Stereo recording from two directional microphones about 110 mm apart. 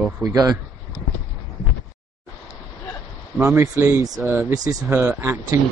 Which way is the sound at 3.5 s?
25° right (ahead or behind).